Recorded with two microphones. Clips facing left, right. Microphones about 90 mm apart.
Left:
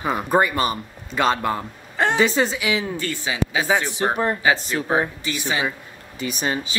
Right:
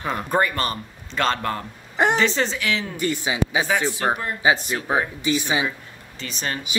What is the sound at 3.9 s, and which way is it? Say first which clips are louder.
Speech: left 3 dB; 25° left (ahead or behind).